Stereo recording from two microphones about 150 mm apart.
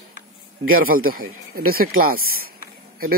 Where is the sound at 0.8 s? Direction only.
75° right (ahead or behind).